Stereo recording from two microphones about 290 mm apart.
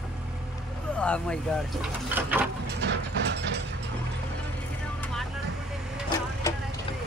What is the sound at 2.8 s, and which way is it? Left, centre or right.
Mechanisms, right.